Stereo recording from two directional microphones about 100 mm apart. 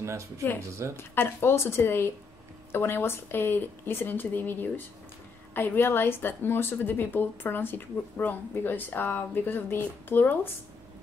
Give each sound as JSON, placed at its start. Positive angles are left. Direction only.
{"t": 0.9, "sound": "a woman's voice", "side_deg": 20}